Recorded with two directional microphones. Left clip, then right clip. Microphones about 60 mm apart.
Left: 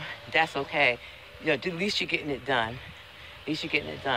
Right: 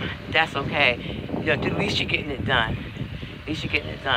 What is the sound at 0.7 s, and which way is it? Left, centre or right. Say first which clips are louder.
Speech: right 4 dB; left.